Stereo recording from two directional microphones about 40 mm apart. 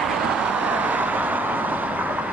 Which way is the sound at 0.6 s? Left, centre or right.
Right.